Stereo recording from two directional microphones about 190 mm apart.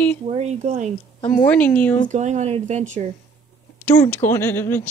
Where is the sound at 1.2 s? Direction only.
40° left (ahead or behind).